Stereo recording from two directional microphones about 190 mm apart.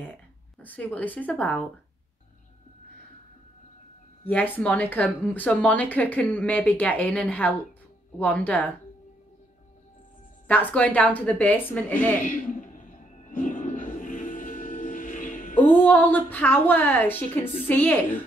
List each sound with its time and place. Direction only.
0.6 s speech: 10° left (ahead or behind)
4.3 s speech: 5° left (ahead or behind)
10.5 s speech: 10° left (ahead or behind)
12.2 s music: 45° left (ahead or behind)
15.5 s speech: 10° left (ahead or behind)